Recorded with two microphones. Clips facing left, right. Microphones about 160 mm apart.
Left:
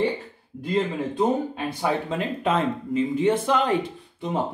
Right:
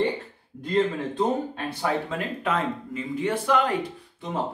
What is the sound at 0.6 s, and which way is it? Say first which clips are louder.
Speech: right 1 dB; 10° left (ahead or behind).